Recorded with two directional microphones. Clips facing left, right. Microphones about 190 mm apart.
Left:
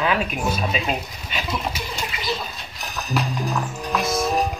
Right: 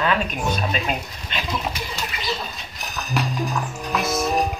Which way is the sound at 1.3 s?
10° left (ahead or behind).